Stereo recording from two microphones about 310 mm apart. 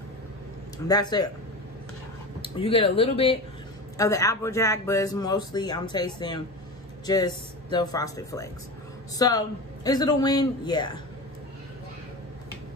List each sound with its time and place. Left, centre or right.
0.8 s a man's voice: centre
2.4 s a man's voice: centre